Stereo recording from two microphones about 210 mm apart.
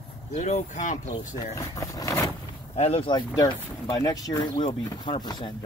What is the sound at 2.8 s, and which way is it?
Speech, 25° left (ahead or behind).